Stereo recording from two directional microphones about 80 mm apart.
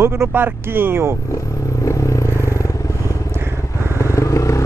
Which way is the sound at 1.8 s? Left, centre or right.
Left.